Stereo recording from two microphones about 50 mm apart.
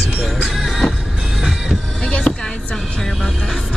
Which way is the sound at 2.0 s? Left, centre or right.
Left.